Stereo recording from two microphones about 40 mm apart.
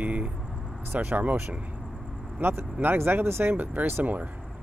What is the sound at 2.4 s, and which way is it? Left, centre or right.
Speech, right.